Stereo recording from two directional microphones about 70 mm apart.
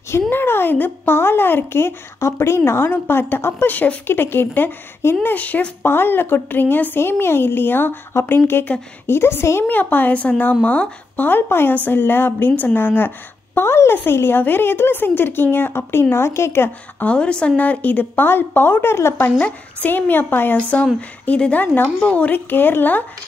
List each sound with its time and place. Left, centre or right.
0.3 s speech: left
9.7 s speech: left
17.0 s a woman's voice: centre; by 19.3 s left
19.4 s speech: left